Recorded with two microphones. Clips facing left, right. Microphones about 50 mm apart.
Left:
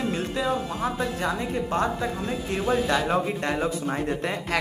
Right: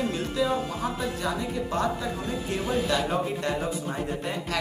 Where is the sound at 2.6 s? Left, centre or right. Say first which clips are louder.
Left 4 dB; centre.